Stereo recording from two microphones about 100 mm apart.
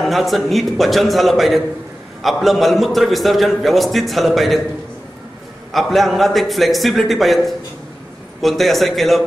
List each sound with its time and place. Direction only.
0.0 s a man's voice: centre (ahead or behind)
5.7 s a man's voice: centre (ahead or behind)